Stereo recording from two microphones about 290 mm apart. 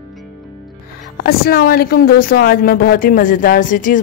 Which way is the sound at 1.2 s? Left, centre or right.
Left.